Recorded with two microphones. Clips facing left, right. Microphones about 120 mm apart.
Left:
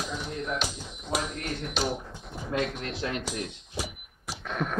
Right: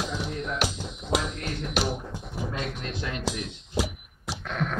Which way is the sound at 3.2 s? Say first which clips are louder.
Right 3 dB; 75° right (ahead or behind).